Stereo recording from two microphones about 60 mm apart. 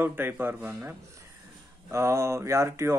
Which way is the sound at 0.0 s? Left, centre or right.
Right.